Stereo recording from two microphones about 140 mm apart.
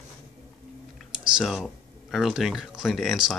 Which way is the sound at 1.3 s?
Centre (ahead or behind).